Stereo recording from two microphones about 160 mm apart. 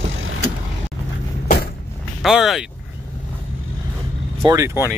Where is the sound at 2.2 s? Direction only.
Centre (ahead or behind).